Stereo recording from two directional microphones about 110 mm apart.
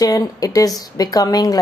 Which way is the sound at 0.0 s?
35° left (ahead or behind).